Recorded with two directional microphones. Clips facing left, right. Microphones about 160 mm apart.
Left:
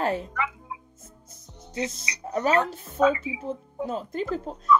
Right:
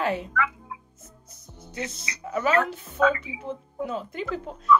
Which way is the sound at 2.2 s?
40° left (ahead or behind).